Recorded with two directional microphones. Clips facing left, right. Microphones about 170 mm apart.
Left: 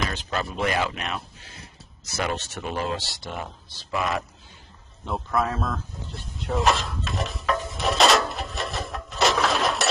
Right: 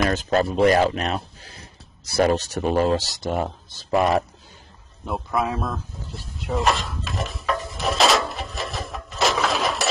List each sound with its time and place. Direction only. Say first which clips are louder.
0.0 s speech: right 8 dB; 45° right (ahead or behind)
5.0 s dog: right 1 dB; 5° right (ahead or behind)